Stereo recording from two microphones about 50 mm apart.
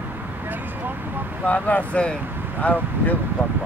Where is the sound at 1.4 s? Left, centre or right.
Left.